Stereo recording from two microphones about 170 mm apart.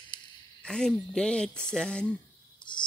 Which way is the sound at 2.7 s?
25° left (ahead or behind).